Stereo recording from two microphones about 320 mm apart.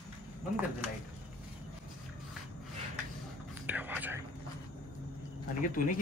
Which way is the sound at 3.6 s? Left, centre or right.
Centre.